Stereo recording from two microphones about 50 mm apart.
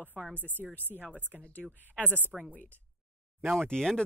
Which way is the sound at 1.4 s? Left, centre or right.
Left.